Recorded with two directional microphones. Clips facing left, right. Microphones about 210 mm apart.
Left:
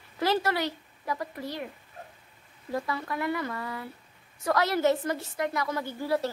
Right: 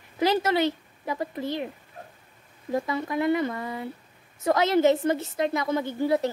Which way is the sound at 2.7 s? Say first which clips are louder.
Right 5 dB; 20° right (ahead or behind).